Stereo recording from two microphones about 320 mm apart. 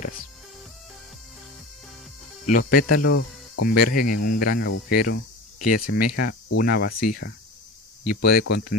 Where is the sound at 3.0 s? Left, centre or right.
Left.